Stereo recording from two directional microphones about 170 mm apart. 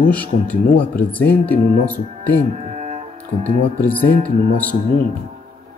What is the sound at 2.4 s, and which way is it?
Music, 45° right (ahead or behind).